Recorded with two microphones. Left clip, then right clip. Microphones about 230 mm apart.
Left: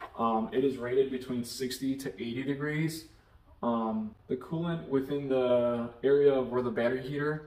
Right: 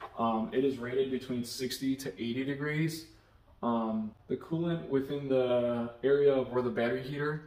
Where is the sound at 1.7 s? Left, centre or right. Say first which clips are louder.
Even; centre.